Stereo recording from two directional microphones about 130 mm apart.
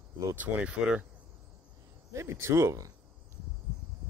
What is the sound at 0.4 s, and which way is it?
Speech, 10° right (ahead or behind).